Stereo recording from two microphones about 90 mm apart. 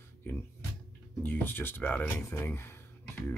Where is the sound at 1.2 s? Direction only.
20° left (ahead or behind).